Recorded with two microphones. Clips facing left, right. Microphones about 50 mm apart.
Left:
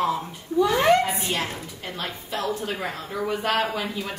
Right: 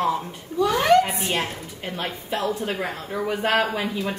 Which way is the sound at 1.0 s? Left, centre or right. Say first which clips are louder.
Right 2 dB; right.